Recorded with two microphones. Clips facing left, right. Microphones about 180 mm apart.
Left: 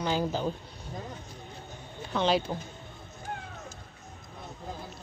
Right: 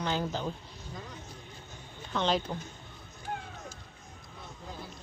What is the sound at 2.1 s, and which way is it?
Speech, 10° left (ahead or behind).